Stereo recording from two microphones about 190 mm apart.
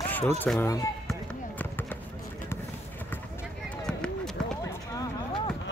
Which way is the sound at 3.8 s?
5° left (ahead or behind).